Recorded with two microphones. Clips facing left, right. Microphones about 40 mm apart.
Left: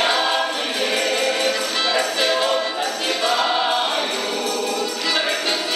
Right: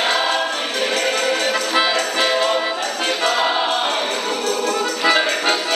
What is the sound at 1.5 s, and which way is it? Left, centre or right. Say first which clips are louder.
Music: right 3 dB; centre.